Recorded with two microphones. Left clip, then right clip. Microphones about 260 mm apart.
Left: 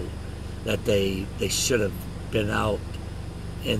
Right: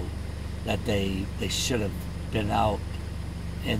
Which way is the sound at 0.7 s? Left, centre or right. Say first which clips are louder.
Left 5 dB; centre.